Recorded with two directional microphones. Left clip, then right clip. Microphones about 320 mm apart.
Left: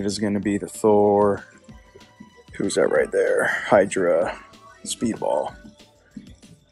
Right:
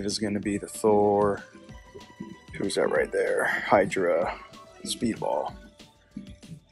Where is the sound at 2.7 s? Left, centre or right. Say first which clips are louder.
Left 5 dB; centre.